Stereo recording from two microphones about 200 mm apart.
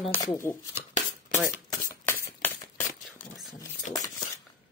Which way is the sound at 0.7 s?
35° left (ahead or behind).